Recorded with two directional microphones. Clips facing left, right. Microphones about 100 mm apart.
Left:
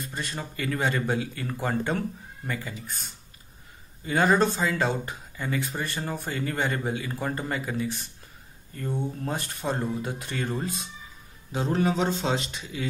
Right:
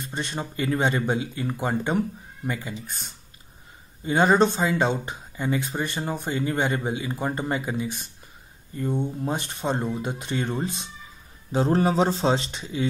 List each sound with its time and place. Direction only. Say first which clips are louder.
0.0 s speech: right 3 dB; 25° right (ahead or behind)